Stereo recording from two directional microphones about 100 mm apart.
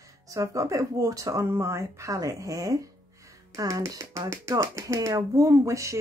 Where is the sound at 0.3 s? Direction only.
30° right (ahead or behind).